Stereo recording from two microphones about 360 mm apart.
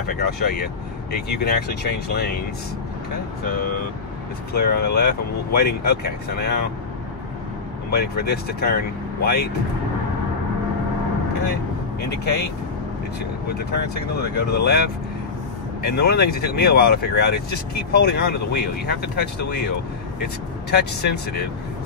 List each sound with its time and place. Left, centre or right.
0.1 s speech: left
4.6 s speech: left
7.9 s speech: left
12.1 s speech: left
14.1 s speech: left
16.0 s speech: left
20.7 s speech: left